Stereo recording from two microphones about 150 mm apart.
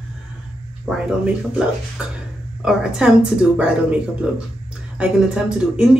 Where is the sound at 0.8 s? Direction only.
5° right (ahead or behind).